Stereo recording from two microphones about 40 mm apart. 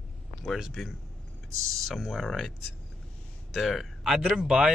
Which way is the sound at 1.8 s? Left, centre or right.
Centre.